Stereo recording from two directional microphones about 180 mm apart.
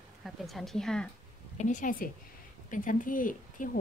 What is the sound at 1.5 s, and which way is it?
Speech, 45° left (ahead or behind).